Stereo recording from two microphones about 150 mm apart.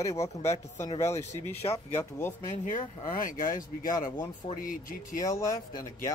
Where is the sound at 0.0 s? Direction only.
20° left (ahead or behind).